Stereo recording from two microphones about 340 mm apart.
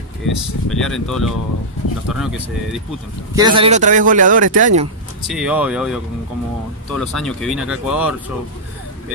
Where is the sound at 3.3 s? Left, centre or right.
Centre.